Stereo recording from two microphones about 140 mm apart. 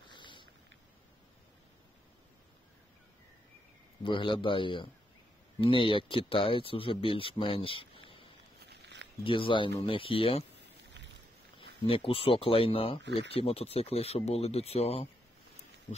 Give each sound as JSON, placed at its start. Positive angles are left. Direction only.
{"t": 0.0, "sound": "a sound", "side_deg": 35}
{"t": 4.0, "sound": "speech", "side_deg": 35}
{"t": 9.2, "sound": "speech", "side_deg": 35}
{"t": 11.5, "sound": "speech", "side_deg": 40}